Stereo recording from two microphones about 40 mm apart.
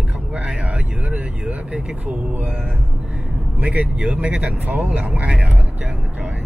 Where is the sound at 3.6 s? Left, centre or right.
Right.